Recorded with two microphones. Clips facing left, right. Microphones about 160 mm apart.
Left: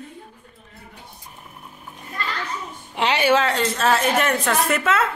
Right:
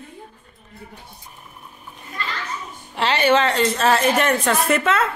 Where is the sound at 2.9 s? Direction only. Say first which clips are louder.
Right 1 dB; 15° left (ahead or behind).